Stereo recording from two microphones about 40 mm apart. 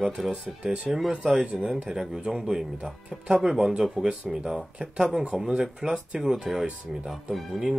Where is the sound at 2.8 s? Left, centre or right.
Right.